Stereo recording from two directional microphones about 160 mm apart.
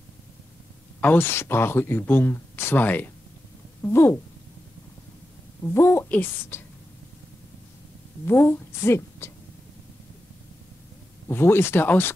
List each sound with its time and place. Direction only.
1.0 s speech: 15° left (ahead or behind)
5.8 s speech: 15° left (ahead or behind)
8.3 s speech: 15° left (ahead or behind)
11.2 s speech: 15° left (ahead or behind)